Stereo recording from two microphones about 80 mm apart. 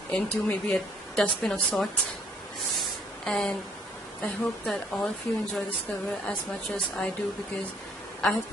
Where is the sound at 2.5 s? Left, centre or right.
Centre.